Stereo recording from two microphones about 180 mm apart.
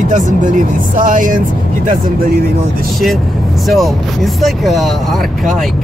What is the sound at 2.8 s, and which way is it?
Speech, centre (ahead or behind).